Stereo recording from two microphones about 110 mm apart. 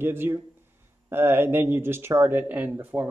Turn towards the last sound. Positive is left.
turn(degrees=-15)  # may be behind; listen again after turning